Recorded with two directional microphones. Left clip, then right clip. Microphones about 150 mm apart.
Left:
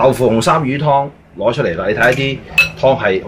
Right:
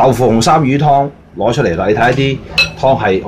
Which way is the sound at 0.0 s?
60° right (ahead or behind).